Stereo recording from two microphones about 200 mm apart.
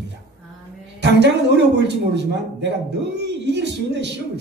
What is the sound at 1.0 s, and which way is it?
A man's voice, 60° right (ahead or behind).